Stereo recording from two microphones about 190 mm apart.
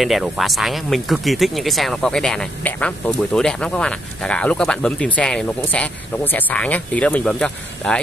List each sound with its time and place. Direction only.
0.0 s speech: centre (ahead or behind)